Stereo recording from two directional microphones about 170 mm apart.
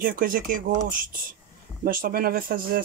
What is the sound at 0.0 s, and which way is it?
Speech, 55° right (ahead or behind).